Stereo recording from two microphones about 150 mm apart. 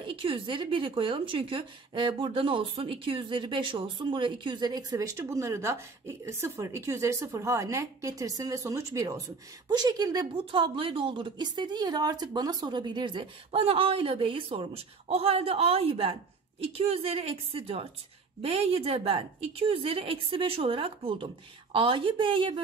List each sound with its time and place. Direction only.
0.0 s a woman's voice: 35° right (ahead or behind)